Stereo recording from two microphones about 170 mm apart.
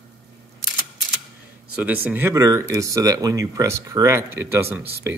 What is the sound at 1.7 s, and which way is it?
Speech, 10° right (ahead or behind).